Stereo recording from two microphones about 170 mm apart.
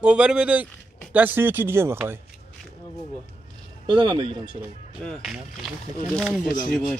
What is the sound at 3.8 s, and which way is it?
Speech, 30° right (ahead or behind).